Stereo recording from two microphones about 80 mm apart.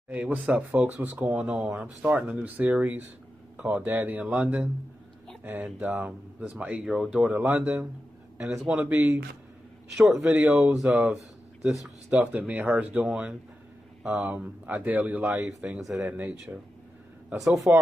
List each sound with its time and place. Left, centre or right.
0.1 s speech: centre
7.2 s speech: centre
8.4 s speech: centre
8.6 s speech: centre
10.2 s speech: centre
12.1 s speech: centre
14.3 s speech: centre
15.4 s speech: centre
16.5 s speech: centre
17.7 s speech: centre